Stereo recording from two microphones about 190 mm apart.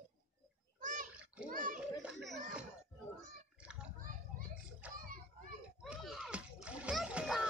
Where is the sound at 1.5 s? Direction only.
45° right (ahead or behind).